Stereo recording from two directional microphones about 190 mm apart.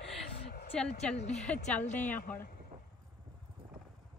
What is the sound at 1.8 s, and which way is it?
Speech, 40° left (ahead or behind).